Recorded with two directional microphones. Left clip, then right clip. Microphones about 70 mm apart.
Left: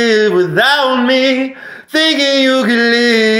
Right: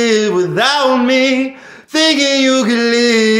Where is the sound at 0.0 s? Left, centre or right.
Right.